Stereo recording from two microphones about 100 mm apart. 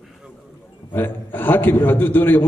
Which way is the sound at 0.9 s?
20° left (ahead or behind).